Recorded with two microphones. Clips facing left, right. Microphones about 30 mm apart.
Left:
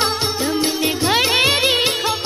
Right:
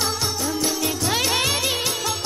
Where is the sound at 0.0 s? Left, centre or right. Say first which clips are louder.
Left 5 dB; left.